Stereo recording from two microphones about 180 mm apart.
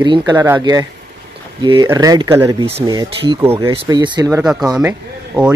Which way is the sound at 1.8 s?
20° right (ahead or behind).